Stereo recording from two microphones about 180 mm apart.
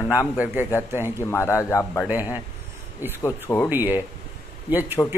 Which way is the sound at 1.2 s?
15° left (ahead or behind).